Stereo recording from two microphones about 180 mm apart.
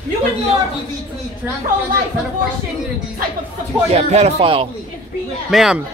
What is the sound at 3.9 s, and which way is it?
Speech, 35° right (ahead or behind).